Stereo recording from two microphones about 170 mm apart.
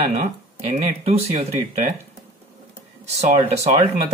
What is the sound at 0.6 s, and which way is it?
Speech, 40° right (ahead or behind).